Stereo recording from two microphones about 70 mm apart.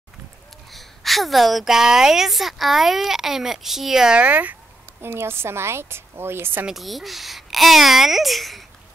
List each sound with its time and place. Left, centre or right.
0.7 s a woman's voice: centre; by 4.6 s right
5.0 s a woman's voice: right
6.7 s a woman's voice: centre